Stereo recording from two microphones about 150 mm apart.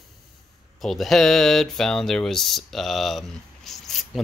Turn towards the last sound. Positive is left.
turn(degrees=0)  # may be behind; listen again after turning